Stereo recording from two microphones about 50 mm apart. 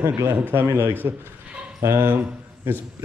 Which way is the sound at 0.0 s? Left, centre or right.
Right.